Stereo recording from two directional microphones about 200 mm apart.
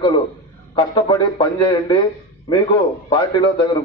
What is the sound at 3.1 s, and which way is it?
Speech, 20° left (ahead or behind).